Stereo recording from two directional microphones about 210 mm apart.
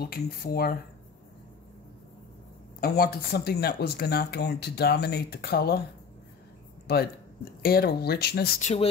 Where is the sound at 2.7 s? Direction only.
50° left (ahead or behind).